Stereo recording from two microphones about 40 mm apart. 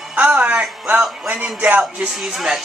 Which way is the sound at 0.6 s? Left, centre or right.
Centre.